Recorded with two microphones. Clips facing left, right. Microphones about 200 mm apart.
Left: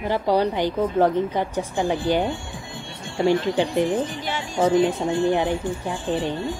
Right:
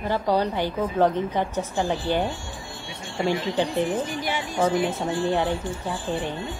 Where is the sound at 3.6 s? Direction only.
15° left (ahead or behind).